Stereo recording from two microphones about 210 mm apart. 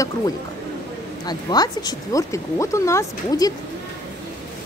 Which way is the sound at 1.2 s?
20° left (ahead or behind).